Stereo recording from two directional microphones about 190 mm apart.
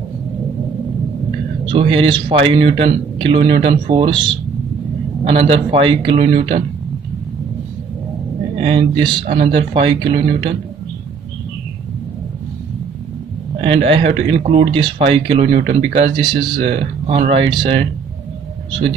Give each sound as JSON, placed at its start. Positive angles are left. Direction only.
{"t": 1.7, "sound": "speech", "side_deg": -30}
{"t": 8.5, "sound": "speech", "side_deg": -25}
{"t": 13.8, "sound": "speech", "side_deg": -30}